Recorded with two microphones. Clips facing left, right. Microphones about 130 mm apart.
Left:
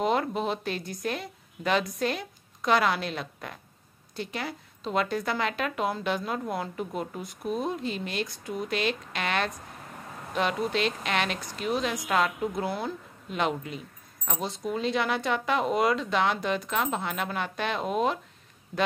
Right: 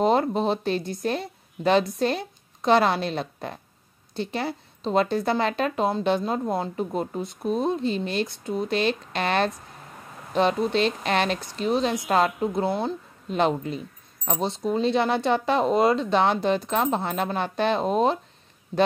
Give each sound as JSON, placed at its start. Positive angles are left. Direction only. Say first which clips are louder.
{"t": 0.0, "sound": "a woman's voice", "louder": "right 5 dB", "side_deg": -30}